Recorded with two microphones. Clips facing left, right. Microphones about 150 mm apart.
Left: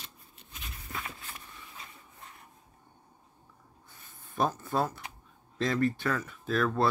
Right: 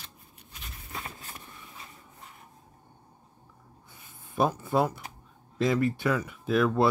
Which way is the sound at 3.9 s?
10° right (ahead or behind).